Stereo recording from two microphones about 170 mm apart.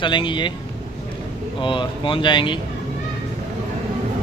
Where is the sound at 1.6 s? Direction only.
30° left (ahead or behind).